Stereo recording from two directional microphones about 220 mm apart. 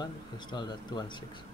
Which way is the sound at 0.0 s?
20° left (ahead or behind).